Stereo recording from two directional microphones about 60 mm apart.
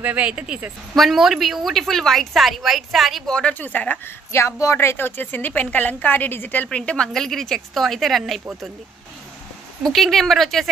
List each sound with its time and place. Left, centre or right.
0.0 s speech: right
0.9 s a woman's voice: centre
3.3 s speech: centre
3.5 s speech: left
4.3 s a woman's voice: left
6.7 s speech: centre
7.1 s a woman's voice: centre
9.8 s a woman's voice: centre